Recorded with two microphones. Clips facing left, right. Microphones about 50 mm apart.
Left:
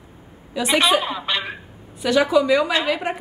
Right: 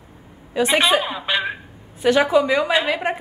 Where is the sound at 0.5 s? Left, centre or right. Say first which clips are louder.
Right 2 dB; right.